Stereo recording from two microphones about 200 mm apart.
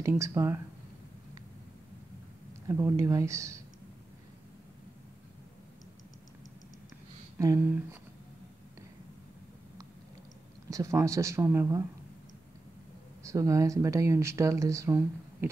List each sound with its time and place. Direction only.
0.0 s speech: 15° right (ahead or behind)
2.7 s speech: 15° right (ahead or behind)
7.3 s speech: 15° right (ahead or behind)
10.7 s speech: 15° right (ahead or behind)
13.2 s speech: 15° right (ahead or behind)